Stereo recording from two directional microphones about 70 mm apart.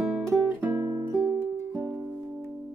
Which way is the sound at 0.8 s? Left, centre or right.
Right.